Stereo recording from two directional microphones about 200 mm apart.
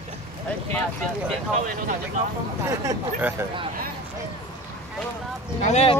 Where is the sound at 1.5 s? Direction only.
40° right (ahead or behind).